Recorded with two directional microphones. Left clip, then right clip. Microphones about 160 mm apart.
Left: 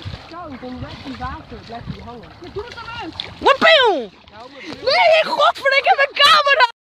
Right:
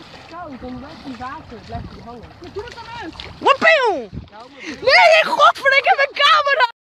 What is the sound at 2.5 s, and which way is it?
Speech, 10° right (ahead or behind).